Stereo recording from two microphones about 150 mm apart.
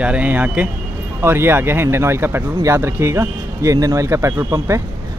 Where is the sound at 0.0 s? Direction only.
10° right (ahead or behind).